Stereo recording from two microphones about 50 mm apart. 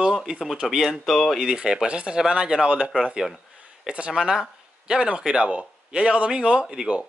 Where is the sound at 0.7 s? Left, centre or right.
Centre.